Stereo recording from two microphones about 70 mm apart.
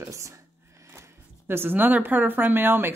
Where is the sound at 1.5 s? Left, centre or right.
Right.